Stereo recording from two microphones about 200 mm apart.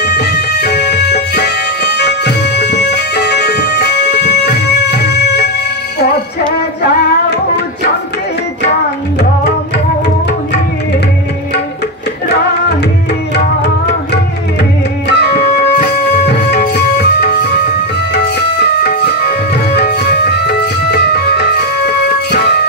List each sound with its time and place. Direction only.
0.0 s music: 55° left (ahead or behind)
15.1 s music: 55° left (ahead or behind)